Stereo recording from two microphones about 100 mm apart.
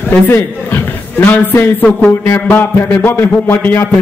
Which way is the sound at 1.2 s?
20° left (ahead or behind).